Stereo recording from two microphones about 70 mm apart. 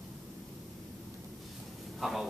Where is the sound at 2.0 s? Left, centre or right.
Centre.